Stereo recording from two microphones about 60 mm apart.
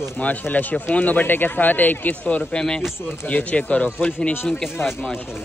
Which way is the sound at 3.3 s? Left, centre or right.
Left.